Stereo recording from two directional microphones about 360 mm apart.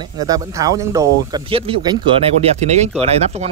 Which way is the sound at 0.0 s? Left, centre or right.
Centre.